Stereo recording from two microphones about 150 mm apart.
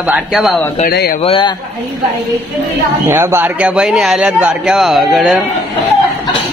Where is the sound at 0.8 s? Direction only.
80° left.